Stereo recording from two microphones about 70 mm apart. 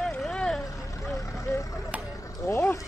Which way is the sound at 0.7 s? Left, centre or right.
Left.